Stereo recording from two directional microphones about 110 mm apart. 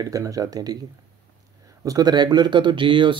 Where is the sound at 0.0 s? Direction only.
30° right (ahead or behind).